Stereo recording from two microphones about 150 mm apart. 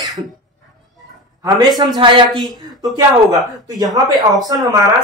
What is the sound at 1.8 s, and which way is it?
A man's voice, 35° right (ahead or behind).